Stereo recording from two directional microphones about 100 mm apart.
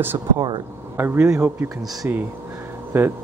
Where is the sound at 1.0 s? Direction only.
20° right (ahead or behind).